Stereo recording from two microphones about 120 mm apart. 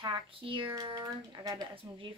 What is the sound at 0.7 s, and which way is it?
Speech, 35° right (ahead or behind).